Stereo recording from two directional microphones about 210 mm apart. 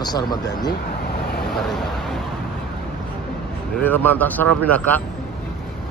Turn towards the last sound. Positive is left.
turn(degrees=10)  # may be behind; listen again after turning